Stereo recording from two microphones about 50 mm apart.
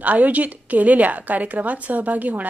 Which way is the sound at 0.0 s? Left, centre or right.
Right.